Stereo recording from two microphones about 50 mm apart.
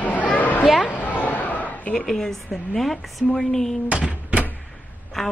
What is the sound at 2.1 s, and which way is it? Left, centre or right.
Speech, centre.